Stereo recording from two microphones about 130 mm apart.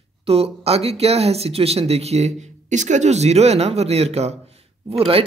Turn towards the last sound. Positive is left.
turn(degrees=-45)  # may be behind; listen again after turning